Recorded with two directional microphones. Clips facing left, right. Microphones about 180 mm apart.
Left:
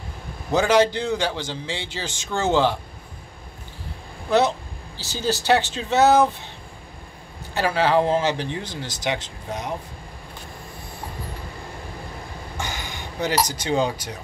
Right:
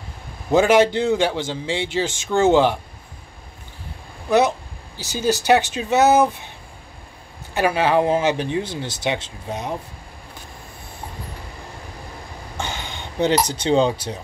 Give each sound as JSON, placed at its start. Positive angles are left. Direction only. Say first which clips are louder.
{"t": 0.5, "sound": "a man's voice", "louder": "right 3 dB", "side_deg": -20}
{"t": 4.3, "sound": "speech", "louder": "right 2 dB", "side_deg": -15}
{"t": 7.5, "sound": "a man's voice", "louder": "right 2 dB", "side_deg": -15}
{"t": 12.5, "sound": "a sound", "louder": "right 3 dB", "side_deg": -25}
{"t": 13.5, "sound": "a man's voice", "louder": "right 5 dB", "side_deg": -25}